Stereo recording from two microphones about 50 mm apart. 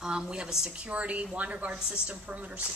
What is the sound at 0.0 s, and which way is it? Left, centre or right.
A woman's voice, centre.